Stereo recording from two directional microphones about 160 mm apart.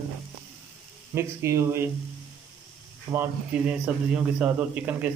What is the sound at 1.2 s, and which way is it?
Speech, 15° right (ahead or behind).